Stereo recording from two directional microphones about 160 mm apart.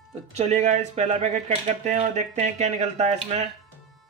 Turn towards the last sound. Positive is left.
turn(degrees=-45)  # may be behind; listen again after turning